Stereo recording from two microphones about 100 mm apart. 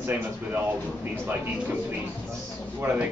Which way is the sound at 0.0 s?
20° right (ahead or behind).